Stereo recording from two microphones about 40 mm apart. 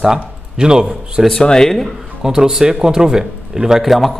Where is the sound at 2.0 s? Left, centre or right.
Centre.